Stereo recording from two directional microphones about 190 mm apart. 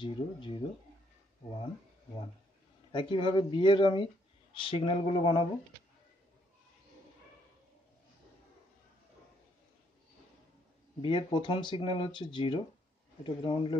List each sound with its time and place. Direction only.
0.0 s speech: 25° left (ahead or behind)
2.9 s speech: 25° left (ahead or behind)
11.0 s speech: 25° left (ahead or behind)